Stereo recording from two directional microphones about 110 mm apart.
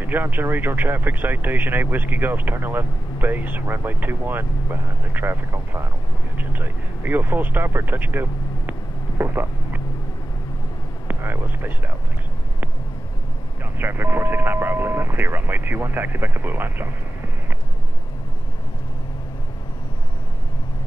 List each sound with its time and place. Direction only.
0.0 s speech: 15° right (ahead or behind)
9.2 s a sound: 20° right (ahead or behind)
11.1 s speech: 20° right (ahead or behind)
13.7 s speech: 20° right (ahead or behind)